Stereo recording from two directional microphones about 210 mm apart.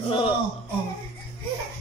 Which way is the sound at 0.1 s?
25° left (ahead or behind).